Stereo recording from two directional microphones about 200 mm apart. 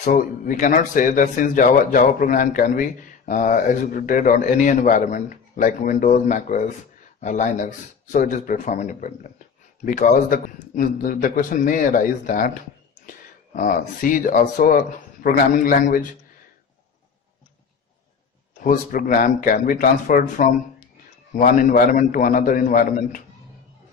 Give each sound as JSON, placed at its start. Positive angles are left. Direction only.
{"t": 0.0, "sound": "speech", "side_deg": 45}
{"t": 18.6, "sound": "speech", "side_deg": 40}